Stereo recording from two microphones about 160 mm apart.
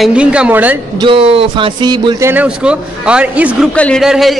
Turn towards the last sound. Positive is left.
turn(degrees=0)  # may be behind; listen again after turning